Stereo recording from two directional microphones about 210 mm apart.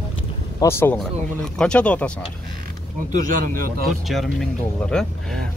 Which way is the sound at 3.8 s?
Centre (ahead or behind).